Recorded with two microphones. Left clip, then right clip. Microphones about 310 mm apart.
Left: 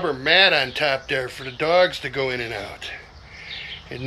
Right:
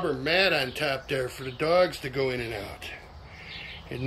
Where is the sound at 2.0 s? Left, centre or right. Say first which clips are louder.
Left 4 dB; centre.